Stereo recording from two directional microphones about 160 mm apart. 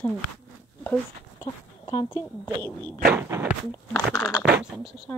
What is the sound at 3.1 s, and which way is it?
Speech, 15° right (ahead or behind).